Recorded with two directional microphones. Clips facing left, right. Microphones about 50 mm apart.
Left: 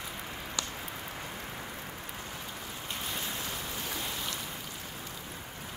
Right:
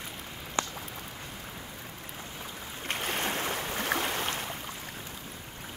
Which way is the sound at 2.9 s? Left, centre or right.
Right.